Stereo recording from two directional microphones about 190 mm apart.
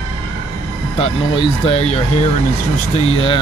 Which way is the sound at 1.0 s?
30° left (ahead or behind).